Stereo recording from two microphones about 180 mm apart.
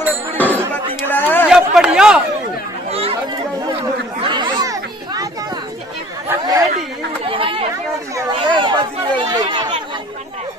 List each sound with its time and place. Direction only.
0.4 s a sound: 10° right (ahead or behind)
1.0 s chatter: 10° left (ahead or behind)
1.5 s a sound: 5° right (ahead or behind)
2.9 s chatter: 35° right (ahead or behind)
4.2 s children playing: 25° right (ahead or behind)
6.2 s chatter: 20° right (ahead or behind)